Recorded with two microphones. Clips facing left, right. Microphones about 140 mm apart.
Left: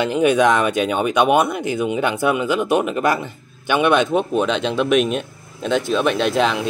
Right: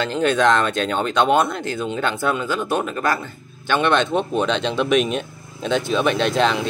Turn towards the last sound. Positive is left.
turn(degrees=5)  # may be behind; listen again after turning